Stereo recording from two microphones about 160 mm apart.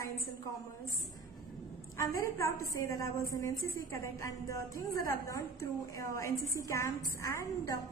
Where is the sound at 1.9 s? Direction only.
20° left (ahead or behind).